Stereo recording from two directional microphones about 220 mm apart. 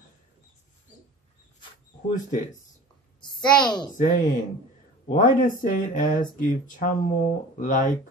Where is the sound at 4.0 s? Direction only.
35° left (ahead or behind).